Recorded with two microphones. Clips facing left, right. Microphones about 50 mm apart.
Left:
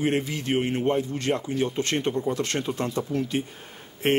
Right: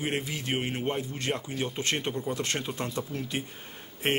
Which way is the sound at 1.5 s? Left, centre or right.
Centre.